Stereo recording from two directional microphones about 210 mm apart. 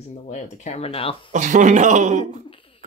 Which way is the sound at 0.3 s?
30° left (ahead or behind).